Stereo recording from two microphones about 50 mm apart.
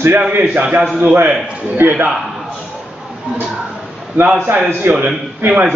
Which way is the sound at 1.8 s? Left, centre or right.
Right.